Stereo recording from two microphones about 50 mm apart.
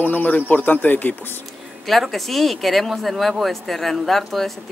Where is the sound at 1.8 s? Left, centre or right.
Centre.